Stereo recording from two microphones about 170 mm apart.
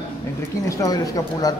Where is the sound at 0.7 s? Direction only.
20° left (ahead or behind).